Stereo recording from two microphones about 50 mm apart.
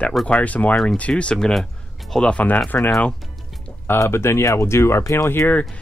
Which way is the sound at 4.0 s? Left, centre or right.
Left.